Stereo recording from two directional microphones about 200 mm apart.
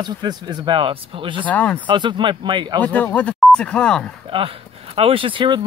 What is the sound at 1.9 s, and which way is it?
Speech, 25° right (ahead or behind).